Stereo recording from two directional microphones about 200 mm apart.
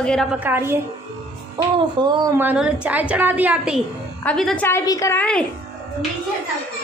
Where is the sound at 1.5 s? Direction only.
25° right (ahead or behind).